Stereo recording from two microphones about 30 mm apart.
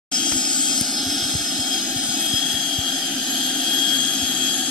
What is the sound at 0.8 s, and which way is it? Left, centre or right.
Jet engine, centre.